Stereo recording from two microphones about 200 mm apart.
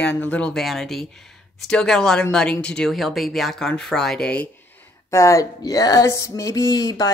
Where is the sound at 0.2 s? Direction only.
5° left (ahead or behind).